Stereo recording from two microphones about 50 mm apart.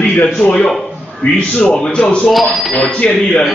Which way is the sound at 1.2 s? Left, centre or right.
Left.